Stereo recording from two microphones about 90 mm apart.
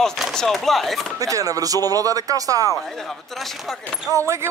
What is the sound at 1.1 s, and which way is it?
Speech, 40° right (ahead or behind).